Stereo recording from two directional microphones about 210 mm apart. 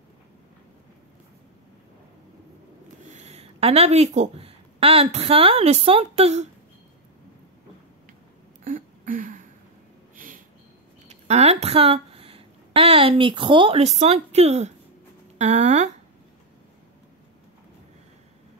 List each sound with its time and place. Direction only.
3.1 s speech: 30° right (ahead or behind)
8.6 s a sound: 40° right (ahead or behind)
11.1 s speech: 30° right (ahead or behind)